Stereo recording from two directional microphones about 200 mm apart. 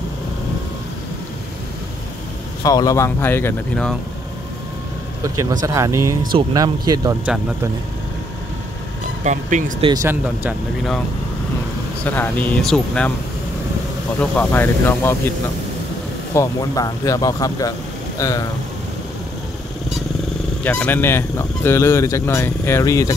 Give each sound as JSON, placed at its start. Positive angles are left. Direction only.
{"t": 2.6, "sound": "speech", "side_deg": 20}
{"t": 5.2, "sound": "speech", "side_deg": -15}
{"t": 9.2, "sound": "speech", "side_deg": -35}
{"t": 12.0, "sound": "speech", "side_deg": 10}
{"t": 14.2, "sound": "speech", "side_deg": 5}
{"t": 16.3, "sound": "speech", "side_deg": 15}
{"t": 20.6, "sound": "speech", "side_deg": 10}